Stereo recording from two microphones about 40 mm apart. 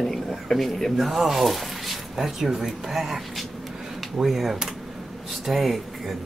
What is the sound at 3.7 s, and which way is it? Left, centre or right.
Drawer open or close, centre.